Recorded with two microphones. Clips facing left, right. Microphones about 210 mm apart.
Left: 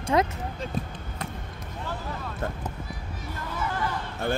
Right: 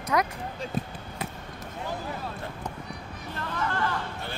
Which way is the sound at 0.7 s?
Centre (ahead or behind).